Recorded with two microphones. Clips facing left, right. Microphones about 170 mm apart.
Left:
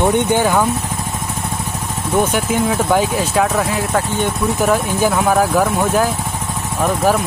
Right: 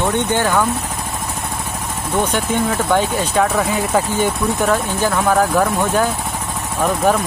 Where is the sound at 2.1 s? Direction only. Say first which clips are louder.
Left 2 dB; 5° left (ahead or behind); by 4.3 s 10° right (ahead or behind).